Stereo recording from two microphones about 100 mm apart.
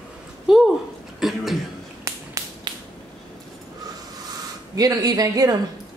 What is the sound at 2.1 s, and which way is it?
Finger snapping, 30° right (ahead or behind).